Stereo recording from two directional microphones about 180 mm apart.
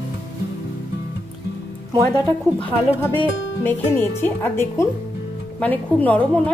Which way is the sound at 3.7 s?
10° left (ahead or behind).